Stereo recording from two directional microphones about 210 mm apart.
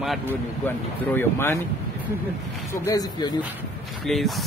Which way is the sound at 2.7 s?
15° left (ahead or behind).